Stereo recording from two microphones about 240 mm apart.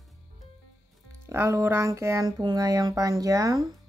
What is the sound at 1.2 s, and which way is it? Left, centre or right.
Speech, centre.